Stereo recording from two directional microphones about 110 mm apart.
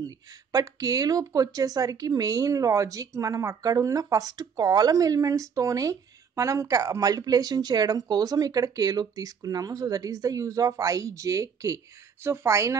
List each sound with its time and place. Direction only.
0.0 s speech: 35° right (ahead or behind)